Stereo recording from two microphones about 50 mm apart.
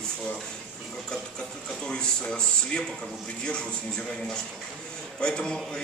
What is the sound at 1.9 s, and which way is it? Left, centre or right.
Speech, centre.